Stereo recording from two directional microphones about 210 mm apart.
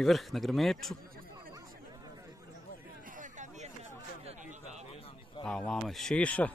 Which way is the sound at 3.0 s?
40° right (ahead or behind).